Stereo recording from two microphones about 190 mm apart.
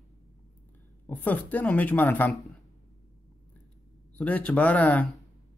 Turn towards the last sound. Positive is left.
turn(degrees=10)  # may be behind; listen again after turning